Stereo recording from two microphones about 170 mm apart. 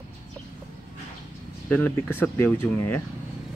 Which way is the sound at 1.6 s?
10° left (ahead or behind).